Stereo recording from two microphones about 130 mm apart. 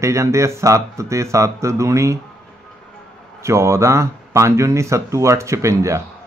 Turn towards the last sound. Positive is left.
turn(degrees=-25)  # may be behind; listen again after turning